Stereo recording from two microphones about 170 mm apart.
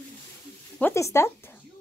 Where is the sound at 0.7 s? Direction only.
15° left (ahead or behind).